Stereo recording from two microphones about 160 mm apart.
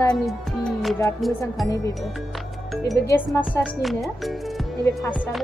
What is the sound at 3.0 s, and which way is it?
Speech, 10° left (ahead or behind).